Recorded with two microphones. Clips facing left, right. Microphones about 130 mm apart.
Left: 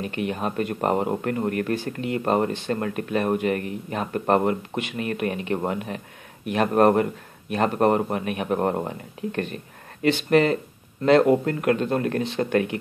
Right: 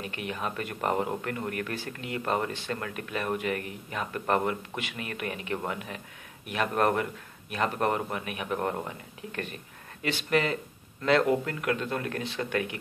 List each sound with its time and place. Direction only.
0.0 s a man's voice: 35° left (ahead or behind)